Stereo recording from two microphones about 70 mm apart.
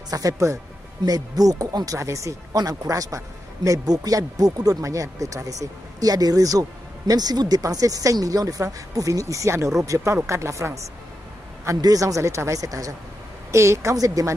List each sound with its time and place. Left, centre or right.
0.1 s speech: right
1.0 s speech: right
2.0 s speech: right
7.1 s speech: right
11.8 s speech: right
13.5 s speech: right
13.9 s speech: right